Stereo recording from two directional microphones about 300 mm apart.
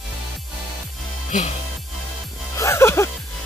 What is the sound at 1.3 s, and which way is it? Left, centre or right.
Speech, left.